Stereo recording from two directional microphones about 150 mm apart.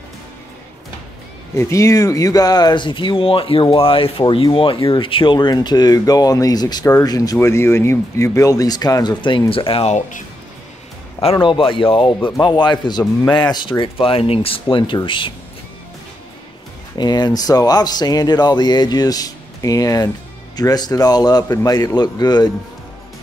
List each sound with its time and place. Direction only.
1.5 s speech: 20° left (ahead or behind); by 10.2 s 50° left (ahead or behind)
11.1 s speech: 35° left (ahead or behind)
16.9 s speech: 30° left (ahead or behind)